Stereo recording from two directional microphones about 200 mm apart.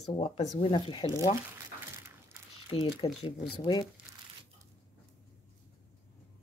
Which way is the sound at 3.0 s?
30° left (ahead or behind).